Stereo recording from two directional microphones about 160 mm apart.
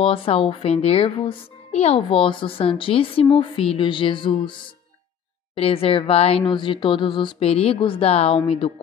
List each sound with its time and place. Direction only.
0.0 s speech: 35° left (ahead or behind)